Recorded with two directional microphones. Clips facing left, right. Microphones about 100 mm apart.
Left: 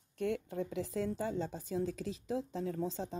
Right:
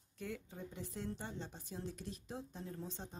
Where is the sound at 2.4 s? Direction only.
90° left.